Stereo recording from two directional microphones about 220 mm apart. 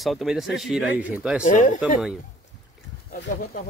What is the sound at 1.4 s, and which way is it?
Speech, 35° left (ahead or behind).